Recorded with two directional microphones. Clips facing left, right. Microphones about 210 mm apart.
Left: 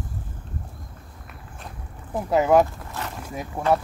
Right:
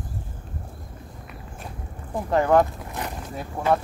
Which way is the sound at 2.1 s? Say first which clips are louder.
Left 1 dB; 5° left (ahead or behind).